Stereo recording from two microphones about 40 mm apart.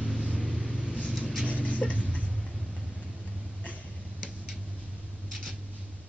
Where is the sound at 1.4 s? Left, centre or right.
Left.